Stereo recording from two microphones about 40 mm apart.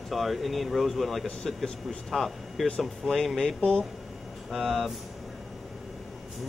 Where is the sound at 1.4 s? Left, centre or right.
Centre.